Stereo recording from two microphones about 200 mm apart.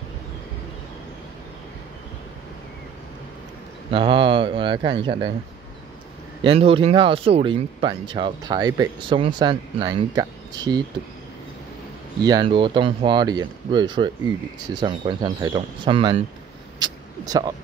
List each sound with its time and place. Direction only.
3.9 s speech: 25° right (ahead or behind)
6.4 s speech: 30° right (ahead or behind)
12.2 s speech: 20° right (ahead or behind)
16.8 s vehicle: 20° right (ahead or behind)